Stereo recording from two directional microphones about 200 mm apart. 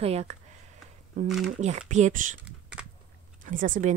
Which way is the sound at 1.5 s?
35° right (ahead or behind).